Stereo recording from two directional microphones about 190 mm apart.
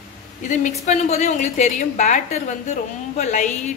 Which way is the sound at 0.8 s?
40° left (ahead or behind).